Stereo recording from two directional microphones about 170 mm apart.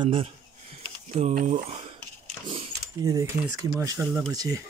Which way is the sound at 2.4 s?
30° right (ahead or behind).